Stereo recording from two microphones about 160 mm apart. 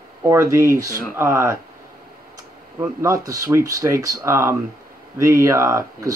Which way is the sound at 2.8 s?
20° right (ahead or behind).